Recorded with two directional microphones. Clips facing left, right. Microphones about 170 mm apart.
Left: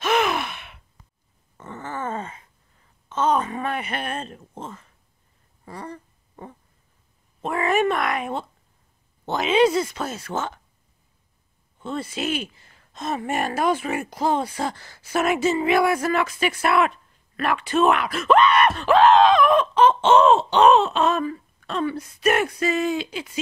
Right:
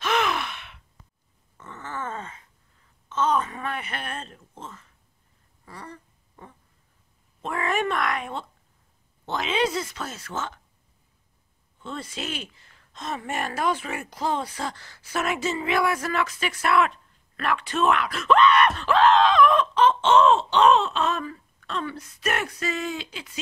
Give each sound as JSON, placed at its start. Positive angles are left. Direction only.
{"t": 0.0, "sound": "gasp", "side_deg": 10}
{"t": 1.7, "sound": "a sound", "side_deg": 45}
{"t": 2.0, "sound": "a sound", "side_deg": 30}
{"t": 3.3, "sound": "a sound", "side_deg": 15}
{"t": 3.5, "sound": "speech", "side_deg": 20}
{"t": 7.4, "sound": "speech", "side_deg": 10}
{"t": 12.0, "sound": "speech", "side_deg": 5}
{"t": 12.9, "sound": "speech", "side_deg": 45}
{"t": 13.3, "sound": "speech", "side_deg": 15}
{"t": 14.6, "sound": "speech", "side_deg": 45}
{"t": 15.2, "sound": "speech", "side_deg": 10}